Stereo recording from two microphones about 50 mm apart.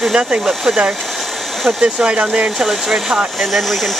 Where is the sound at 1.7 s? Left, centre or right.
Centre.